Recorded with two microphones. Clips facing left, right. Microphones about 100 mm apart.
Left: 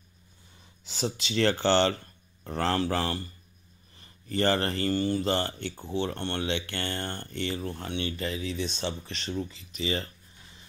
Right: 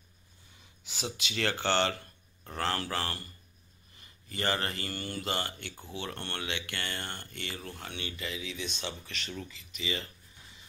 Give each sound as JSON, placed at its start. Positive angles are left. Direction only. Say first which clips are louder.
{"t": 0.8, "sound": "speech", "louder": "left 6 dB", "side_deg": 35}